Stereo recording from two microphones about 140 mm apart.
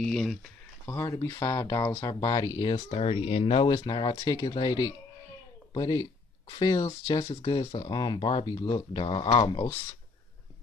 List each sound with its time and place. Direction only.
0.0 s speech: 5° left (ahead or behind)
0.8 s speech: 25° left (ahead or behind)
2.9 s speech: 45° left (ahead or behind)